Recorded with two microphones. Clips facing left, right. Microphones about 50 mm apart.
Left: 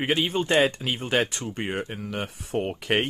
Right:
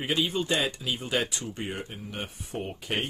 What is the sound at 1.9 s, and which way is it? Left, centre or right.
Speech, left.